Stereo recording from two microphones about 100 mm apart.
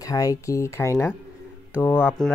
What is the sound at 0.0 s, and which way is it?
Speech, 35° left (ahead or behind).